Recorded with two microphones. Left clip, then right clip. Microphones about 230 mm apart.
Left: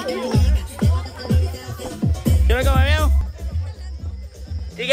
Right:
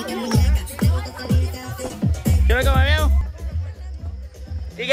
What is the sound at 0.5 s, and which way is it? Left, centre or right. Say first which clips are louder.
Music: even; right.